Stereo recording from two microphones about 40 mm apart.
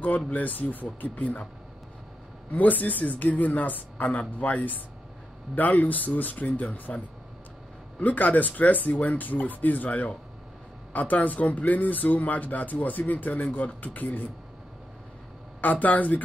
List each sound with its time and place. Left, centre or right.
0.3 s speech: left
2.5 s speech: left
8.0 s speech: left
15.6 s speech: left